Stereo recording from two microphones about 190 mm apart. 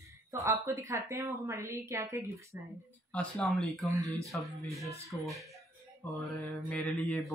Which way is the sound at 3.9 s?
15° right (ahead or behind).